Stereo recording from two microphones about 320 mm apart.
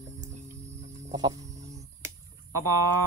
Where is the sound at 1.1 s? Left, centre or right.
Centre.